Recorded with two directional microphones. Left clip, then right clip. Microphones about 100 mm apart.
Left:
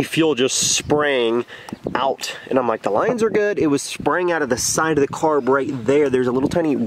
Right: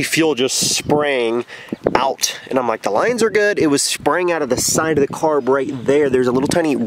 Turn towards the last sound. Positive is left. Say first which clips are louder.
# right 3 dB
turn(degrees=-35)  # may be behind; listen again after turning